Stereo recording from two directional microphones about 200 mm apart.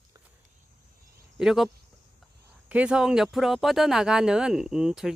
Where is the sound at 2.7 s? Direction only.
5° right (ahead or behind).